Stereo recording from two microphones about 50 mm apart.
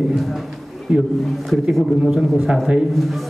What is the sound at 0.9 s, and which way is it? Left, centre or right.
Speech, centre.